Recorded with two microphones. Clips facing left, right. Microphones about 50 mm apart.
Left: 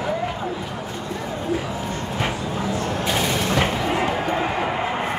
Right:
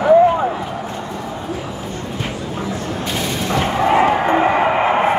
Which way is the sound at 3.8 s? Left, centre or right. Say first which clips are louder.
Right 8 dB; right.